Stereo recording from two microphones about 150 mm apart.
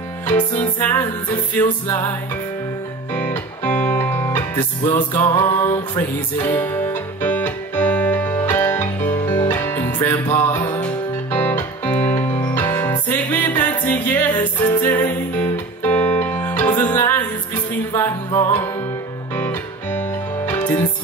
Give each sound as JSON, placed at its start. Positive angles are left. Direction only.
{"t": 0.7, "sound": "music", "side_deg": 10}
{"t": 3.2, "sound": "music", "side_deg": 10}
{"t": 12.0, "sound": "music", "side_deg": 50}
{"t": 12.6, "sound": "music", "side_deg": 20}